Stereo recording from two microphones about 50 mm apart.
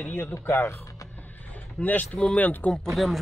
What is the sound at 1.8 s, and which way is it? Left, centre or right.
Speech, left.